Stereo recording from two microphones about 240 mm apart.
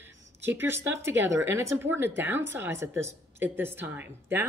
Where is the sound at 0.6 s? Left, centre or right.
Centre.